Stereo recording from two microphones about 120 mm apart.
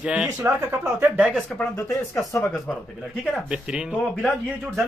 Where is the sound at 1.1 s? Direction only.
5° right (ahead or behind).